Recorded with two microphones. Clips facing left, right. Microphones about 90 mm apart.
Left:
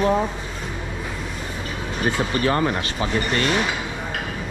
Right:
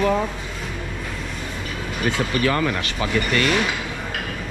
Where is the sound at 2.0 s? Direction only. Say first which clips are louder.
Even; 30° left (ahead or behind).